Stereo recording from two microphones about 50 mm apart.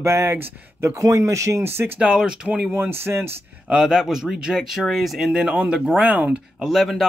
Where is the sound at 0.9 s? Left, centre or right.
Right.